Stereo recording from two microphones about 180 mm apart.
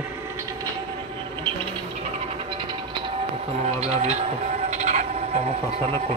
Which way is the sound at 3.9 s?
40° right (ahead or behind).